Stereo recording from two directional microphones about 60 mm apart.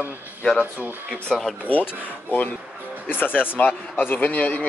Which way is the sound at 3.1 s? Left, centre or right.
Left.